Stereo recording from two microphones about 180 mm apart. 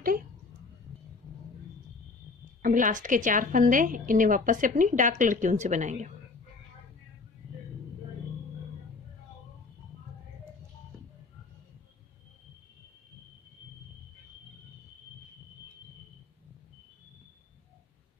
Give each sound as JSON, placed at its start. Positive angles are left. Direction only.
{"t": 2.6, "sound": "a woman's voice", "side_deg": -45}